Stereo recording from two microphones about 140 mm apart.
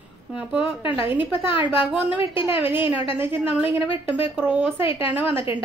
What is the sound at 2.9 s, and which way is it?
Speech, 15° right (ahead or behind).